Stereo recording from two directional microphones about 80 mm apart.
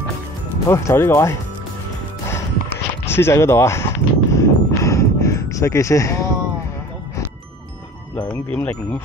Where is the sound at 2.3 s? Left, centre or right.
Left.